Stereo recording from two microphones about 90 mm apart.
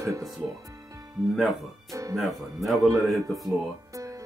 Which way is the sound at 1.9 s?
40° right (ahead or behind).